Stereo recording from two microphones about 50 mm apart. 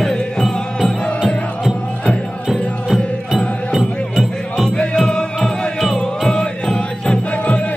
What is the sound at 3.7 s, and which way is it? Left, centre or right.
Music, centre.